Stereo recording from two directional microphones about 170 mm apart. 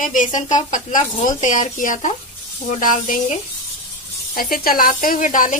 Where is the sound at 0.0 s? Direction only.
50° left (ahead or behind).